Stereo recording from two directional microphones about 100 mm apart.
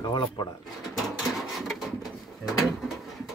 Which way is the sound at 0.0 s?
45° left (ahead or behind).